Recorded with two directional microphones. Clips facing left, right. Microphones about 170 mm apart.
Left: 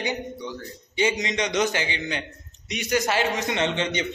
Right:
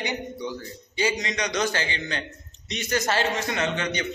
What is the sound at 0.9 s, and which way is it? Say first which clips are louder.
A man's voice: left 2 dB; 20° left (ahead or behind).